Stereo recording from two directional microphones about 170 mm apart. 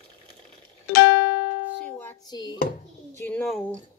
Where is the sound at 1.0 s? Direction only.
70° left (ahead or behind).